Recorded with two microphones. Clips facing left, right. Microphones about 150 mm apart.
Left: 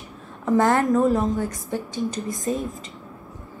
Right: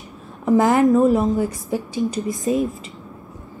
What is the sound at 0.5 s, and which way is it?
Speech, 20° right (ahead or behind).